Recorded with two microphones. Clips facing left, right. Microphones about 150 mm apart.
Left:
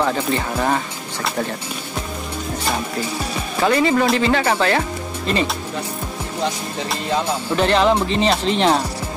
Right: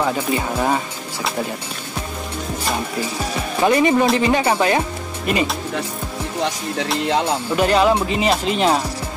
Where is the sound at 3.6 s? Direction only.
20° right (ahead or behind).